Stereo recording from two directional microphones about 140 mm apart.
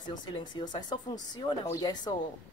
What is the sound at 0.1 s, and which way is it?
A woman's voice, 30° left (ahead or behind).